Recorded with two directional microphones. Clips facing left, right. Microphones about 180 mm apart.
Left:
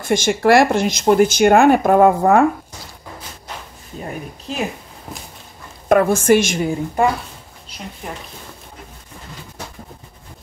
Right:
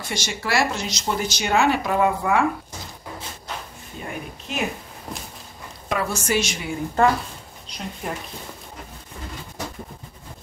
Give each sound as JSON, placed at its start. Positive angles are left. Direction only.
{"t": 0.0, "sound": "speech", "side_deg": 50}
{"t": 4.5, "sound": "speech", "side_deg": 35}
{"t": 5.1, "sound": "walk", "side_deg": 5}
{"t": 5.9, "sound": "speech", "side_deg": 55}
{"t": 7.0, "sound": "speech", "side_deg": 10}